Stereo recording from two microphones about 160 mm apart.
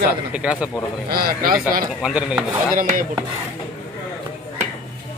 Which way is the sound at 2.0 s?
5° right (ahead or behind).